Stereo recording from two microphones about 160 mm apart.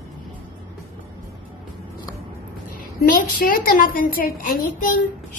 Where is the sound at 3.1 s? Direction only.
65° left (ahead or behind).